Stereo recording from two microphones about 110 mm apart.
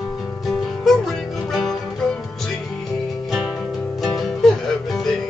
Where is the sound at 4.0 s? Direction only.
Centre (ahead or behind).